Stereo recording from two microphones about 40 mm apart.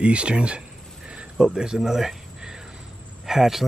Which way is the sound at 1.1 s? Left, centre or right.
Right.